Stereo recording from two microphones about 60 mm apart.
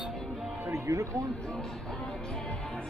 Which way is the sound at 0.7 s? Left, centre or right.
Right.